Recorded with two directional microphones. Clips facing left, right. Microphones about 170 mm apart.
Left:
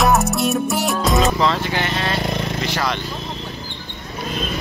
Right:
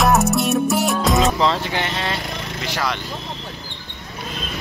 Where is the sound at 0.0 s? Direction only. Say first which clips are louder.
Even; centre (ahead or behind).